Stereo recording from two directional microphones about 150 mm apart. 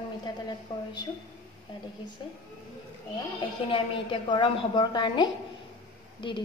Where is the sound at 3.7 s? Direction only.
35° left (ahead or behind).